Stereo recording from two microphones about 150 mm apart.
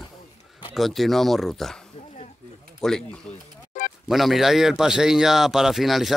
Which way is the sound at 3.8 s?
60° left (ahead or behind).